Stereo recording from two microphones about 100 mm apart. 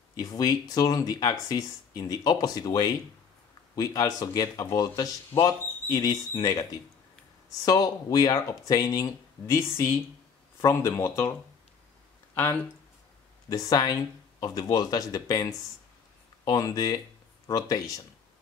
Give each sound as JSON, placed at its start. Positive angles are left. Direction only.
{"t": 0.1, "sound": "speech", "side_deg": 35}
{"t": 7.6, "sound": "speech", "side_deg": 40}
{"t": 13.5, "sound": "speech", "side_deg": 40}